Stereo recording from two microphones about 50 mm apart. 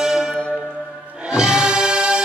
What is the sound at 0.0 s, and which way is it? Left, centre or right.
Music, centre.